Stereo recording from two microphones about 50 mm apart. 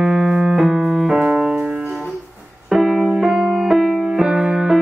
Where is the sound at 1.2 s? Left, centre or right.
Right.